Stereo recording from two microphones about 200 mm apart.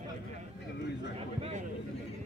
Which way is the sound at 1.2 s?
30° right (ahead or behind).